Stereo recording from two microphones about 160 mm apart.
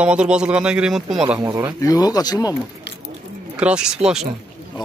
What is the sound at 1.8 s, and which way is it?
Speech, 20° left (ahead or behind).